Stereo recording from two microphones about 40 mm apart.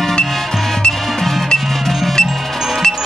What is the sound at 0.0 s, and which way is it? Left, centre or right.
Music, centre.